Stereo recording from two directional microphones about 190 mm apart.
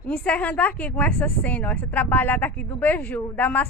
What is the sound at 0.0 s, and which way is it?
A woman's voice, 5° left (ahead or behind).